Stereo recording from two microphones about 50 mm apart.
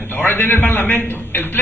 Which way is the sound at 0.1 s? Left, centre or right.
Left.